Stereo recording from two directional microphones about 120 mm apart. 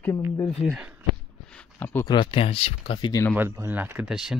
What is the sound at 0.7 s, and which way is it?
Speech, 10° right (ahead or behind).